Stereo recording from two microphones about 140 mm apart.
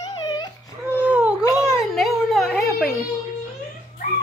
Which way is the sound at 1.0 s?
10° right (ahead or behind).